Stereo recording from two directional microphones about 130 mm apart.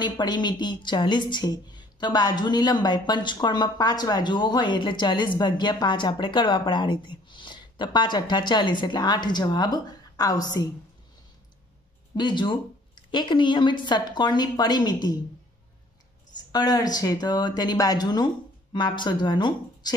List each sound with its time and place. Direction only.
0.0 s a woman's voice: 35° left (ahead or behind)
12.2 s a woman's voice: 35° left (ahead or behind)
16.5 s a woman's voice: 30° left (ahead or behind)